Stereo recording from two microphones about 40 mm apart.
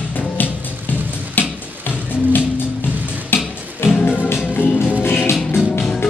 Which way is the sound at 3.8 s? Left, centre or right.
Left.